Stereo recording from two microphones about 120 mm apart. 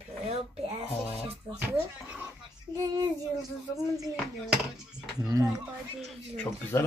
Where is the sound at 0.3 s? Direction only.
60° right (ahead or behind).